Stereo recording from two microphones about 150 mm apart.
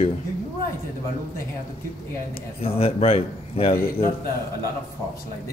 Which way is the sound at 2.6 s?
40° left (ahead or behind).